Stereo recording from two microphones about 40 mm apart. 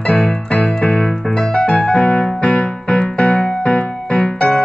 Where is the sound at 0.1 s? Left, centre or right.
Left.